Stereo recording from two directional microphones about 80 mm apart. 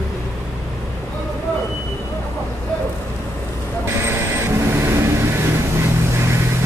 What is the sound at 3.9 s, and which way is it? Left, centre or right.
Vehicle, right.